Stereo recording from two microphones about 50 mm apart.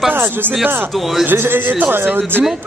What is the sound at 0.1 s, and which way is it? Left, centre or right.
Speech, right.